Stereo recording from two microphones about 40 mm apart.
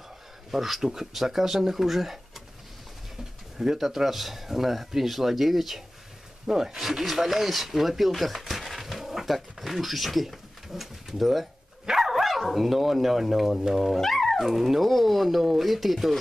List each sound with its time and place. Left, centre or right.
0.5 s speech: centre
3.5 s speech: centre
6.4 s speech: centre
13.9 s speech: centre